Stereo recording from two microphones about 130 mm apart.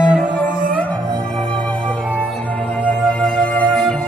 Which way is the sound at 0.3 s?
10° left (ahead or behind).